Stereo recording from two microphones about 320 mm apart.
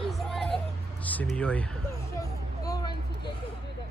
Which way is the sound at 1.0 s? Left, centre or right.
Centre.